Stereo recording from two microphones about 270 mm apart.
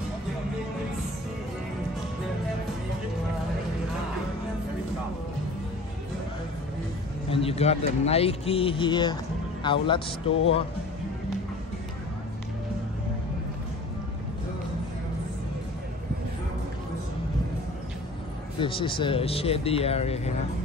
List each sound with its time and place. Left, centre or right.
7.2 s speech: left
18.6 s speech: centre